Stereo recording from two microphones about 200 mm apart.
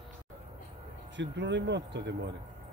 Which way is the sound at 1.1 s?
60° right (ahead or behind).